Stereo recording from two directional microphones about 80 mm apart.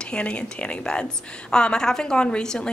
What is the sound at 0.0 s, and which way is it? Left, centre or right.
A woman's voice, centre.